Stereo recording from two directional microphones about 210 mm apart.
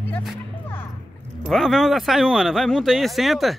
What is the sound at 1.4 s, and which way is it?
Speech, centre (ahead or behind).